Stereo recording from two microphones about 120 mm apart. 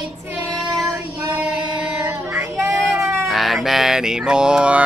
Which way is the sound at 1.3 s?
10° right (ahead or behind).